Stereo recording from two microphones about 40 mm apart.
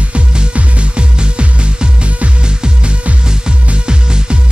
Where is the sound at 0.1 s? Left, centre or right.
Right.